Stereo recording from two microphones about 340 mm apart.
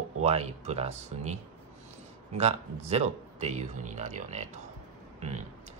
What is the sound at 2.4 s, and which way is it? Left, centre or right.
Speech, centre.